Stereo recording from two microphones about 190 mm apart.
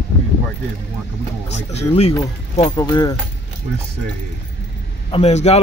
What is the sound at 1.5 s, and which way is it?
Speech, 35° left (ahead or behind).